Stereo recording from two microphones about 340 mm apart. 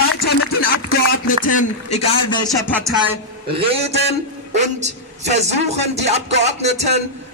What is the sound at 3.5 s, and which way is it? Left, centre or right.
A woman's voice, centre.